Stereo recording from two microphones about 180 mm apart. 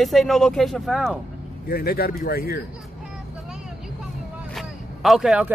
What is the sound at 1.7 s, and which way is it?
Speech, 55° left (ahead or behind).